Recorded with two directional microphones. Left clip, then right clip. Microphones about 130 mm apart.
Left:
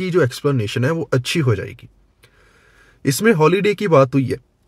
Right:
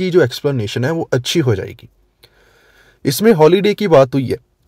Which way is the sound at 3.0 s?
35° right (ahead or behind).